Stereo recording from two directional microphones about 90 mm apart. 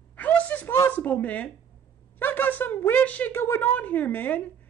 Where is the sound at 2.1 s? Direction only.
20° left (ahead or behind).